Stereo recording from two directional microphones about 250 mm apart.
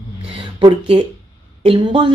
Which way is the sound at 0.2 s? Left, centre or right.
Right.